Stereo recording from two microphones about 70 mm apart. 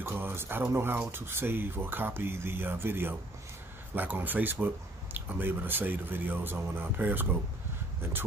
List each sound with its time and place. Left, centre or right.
0.0 s speech: right